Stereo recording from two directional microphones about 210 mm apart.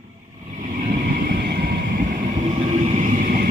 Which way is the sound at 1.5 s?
45° right (ahead or behind).